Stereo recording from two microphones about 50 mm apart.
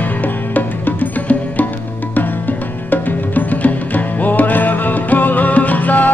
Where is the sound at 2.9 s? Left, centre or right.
Left.